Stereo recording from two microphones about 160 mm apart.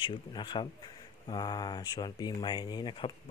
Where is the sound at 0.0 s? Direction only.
30° left (ahead or behind).